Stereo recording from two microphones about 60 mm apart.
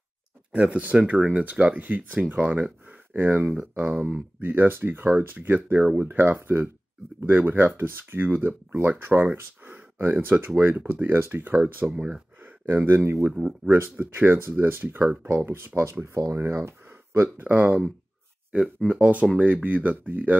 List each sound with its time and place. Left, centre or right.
0.5 s speech: right
11.9 s speech: centre
12.4 s speech: right
13.3 s speech: centre
13.7 s speech: right
17.4 s speech: right
18.9 s speech: right